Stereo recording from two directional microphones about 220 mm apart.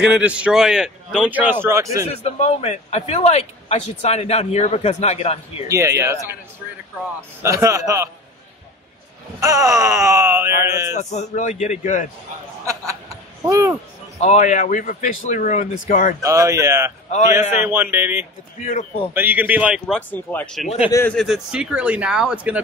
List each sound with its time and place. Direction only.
0.0 s a man's voice: 5° right (ahead or behind)
2.0 s a man's voice: 30° left (ahead or behind)
5.7 s speech: 15° right (ahead or behind)
7.4 s speech: 15° right (ahead or behind)
9.4 s speech: 15° right (ahead or behind)
11.0 s speech: 30° left (ahead or behind)
13.4 s speech: 15° right (ahead or behind)
14.2 s speech: 35° left (ahead or behind)
16.2 s speech: 15° right (ahead or behind)
18.6 s speech: 35° left (ahead or behind)
19.1 s a man's voice: 10° right (ahead or behind)